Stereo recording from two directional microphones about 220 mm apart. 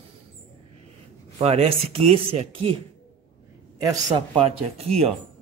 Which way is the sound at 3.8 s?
20° right (ahead or behind).